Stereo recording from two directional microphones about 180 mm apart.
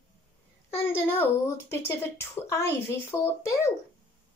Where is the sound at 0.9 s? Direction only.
10° left (ahead or behind).